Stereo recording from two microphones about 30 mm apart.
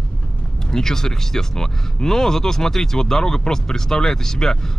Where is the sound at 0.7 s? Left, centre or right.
Centre.